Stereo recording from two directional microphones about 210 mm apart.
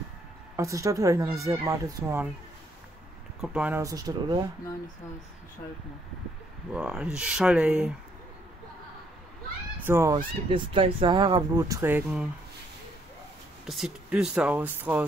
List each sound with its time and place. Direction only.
0.6 s speech: 15° right (ahead or behind)
3.3 s speech: 5° right (ahead or behind)
6.7 s speech: 5° right (ahead or behind)
9.8 s speech: 15° right (ahead or behind)
13.7 s speech: centre (ahead or behind)